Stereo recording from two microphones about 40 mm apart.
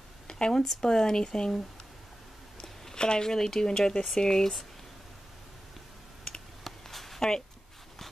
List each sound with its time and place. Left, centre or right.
0.3 s speech: centre
2.6 s speech: centre
6.6 s a sound: centre